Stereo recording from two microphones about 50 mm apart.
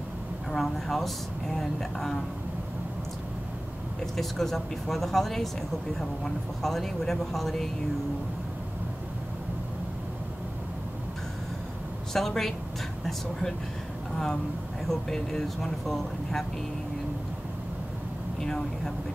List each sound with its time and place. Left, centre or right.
0.5 s speech: centre
4.0 s speech: centre
12.1 s speech: centre